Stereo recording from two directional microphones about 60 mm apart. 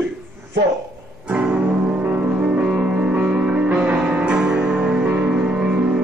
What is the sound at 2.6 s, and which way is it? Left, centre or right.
Music, centre.